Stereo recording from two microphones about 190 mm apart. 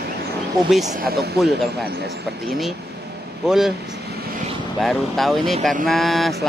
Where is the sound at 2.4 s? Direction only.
Centre (ahead or behind).